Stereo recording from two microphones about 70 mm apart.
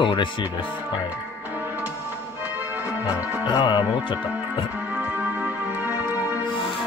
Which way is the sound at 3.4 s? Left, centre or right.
Left.